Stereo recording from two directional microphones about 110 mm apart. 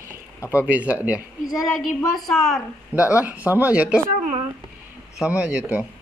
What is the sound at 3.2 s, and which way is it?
Speech, 15° right (ahead or behind).